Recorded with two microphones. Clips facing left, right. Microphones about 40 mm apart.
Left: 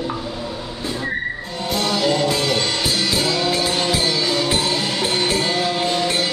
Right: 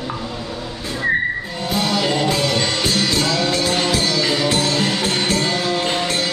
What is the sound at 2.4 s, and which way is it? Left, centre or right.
Music, centre.